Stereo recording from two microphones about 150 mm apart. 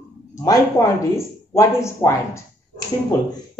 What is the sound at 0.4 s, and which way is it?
A woman's voice, 20° left (ahead or behind).